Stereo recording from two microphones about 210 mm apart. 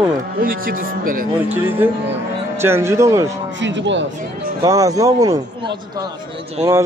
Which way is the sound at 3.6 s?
60° right (ahead or behind).